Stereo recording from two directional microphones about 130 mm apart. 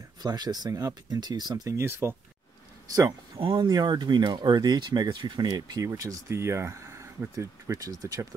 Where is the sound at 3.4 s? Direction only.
40° right (ahead or behind).